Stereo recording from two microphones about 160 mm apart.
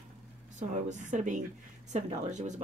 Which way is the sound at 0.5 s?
50° right (ahead or behind).